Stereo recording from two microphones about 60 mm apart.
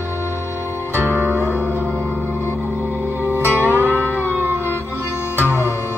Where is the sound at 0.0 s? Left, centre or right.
Right.